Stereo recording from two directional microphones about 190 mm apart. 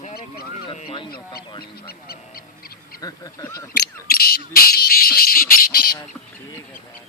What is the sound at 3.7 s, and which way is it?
Speech, 55° left (ahead or behind).